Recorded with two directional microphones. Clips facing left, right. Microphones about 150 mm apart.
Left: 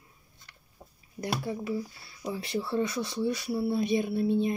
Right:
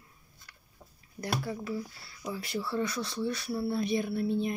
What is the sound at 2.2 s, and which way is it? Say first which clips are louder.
Speech: left 3 dB; 25° left (ahead or behind).